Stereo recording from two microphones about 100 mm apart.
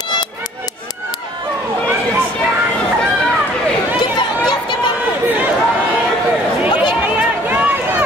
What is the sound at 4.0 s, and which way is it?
Chatter, 50° left (ahead or behind).